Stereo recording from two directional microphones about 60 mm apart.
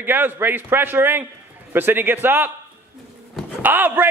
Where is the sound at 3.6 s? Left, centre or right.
Right.